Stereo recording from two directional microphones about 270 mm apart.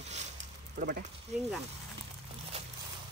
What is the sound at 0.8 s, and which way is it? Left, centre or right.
Speech, right.